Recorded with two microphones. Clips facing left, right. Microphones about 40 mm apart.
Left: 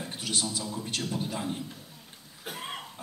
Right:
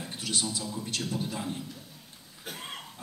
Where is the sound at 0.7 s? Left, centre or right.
Centre.